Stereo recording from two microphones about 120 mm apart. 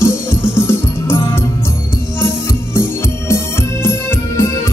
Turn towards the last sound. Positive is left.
turn(degrees=20)  # may be behind; listen again after turning